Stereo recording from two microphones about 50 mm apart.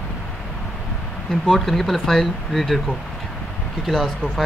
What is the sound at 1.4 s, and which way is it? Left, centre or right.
Speech, centre.